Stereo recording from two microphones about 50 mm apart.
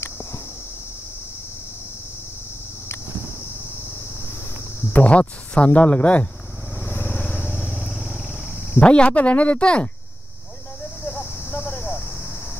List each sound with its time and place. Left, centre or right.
4.9 s speech: left
6.8 s vehicle: left
8.7 s speech: left
11.5 s cricket: left